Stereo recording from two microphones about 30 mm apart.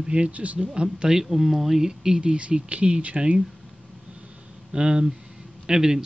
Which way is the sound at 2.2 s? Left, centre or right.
Right.